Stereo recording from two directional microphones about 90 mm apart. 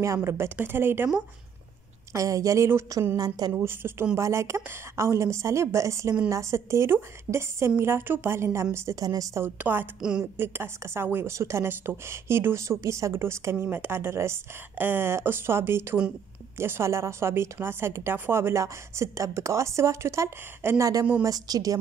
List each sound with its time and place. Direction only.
0.0 s a woman's voice: 35° right (ahead or behind)
2.1 s a woman's voice: 40° right (ahead or behind)
3.5 s a woman's voice: 25° right (ahead or behind); by 9.4 s 40° right (ahead or behind)
9.4 s a woman's voice: 25° right (ahead or behind); by 21.7 s 45° right (ahead or behind)